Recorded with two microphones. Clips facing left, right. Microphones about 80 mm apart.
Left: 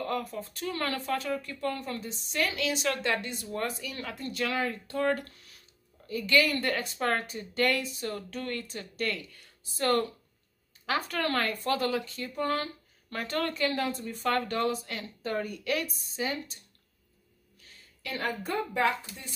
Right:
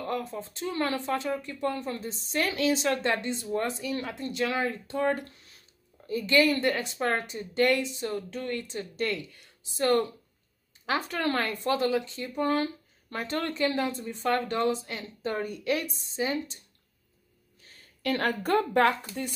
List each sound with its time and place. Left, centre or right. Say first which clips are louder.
0.0 s speech: even; right
17.6 s a sound: right 1 dB; right
18.0 s a woman's voice: right 6 dB; right